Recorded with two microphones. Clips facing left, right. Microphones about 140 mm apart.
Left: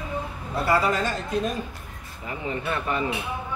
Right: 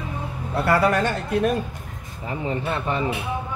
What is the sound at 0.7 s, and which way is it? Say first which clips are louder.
Speech: right 3 dB; 65° right (ahead or behind).